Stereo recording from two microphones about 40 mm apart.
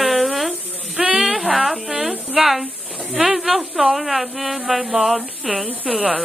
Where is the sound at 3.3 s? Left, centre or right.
Centre.